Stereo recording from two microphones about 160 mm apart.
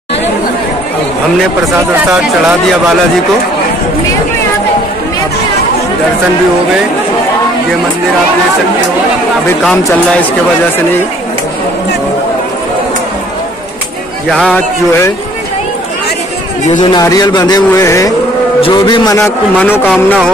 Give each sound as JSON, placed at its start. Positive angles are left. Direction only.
{"t": 14.3, "sound": "speech", "side_deg": 5}
{"t": 16.8, "sound": "a man's voice", "side_deg": 25}
{"t": 19.1, "sound": "a man's voice", "side_deg": 15}
{"t": 19.9, "sound": "speech", "side_deg": 0}